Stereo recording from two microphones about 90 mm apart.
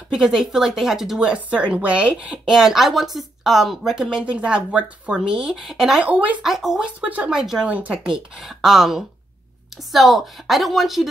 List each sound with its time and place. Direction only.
0.1 s speech: 5° right (ahead or behind)
6.0 s speech: 15° right (ahead or behind)
6.4 s speech: 5° right (ahead or behind)